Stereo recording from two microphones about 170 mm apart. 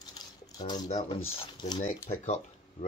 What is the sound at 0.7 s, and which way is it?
Speech, 40° left (ahead or behind).